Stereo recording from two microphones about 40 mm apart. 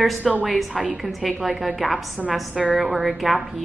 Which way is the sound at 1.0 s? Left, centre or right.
Centre.